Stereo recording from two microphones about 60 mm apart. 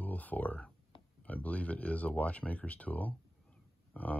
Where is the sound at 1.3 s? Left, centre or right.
Left.